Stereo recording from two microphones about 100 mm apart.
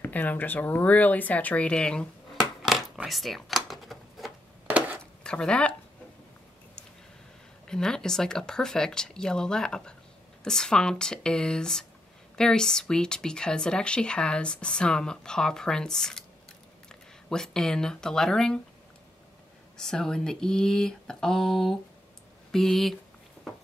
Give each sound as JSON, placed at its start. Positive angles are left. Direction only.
{"t": 0.0, "sound": "speech", "side_deg": 15}
{"t": 2.6, "sound": "a sound", "side_deg": -5}
{"t": 4.6, "sound": "crushing", "side_deg": -15}
{"t": 5.2, "sound": "speech", "side_deg": 10}
{"t": 7.6, "sound": "speech", "side_deg": 5}
{"t": 19.8, "sound": "speech", "side_deg": 5}